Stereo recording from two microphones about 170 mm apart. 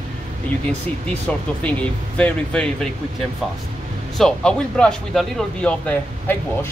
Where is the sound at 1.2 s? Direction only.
5° left (ahead or behind).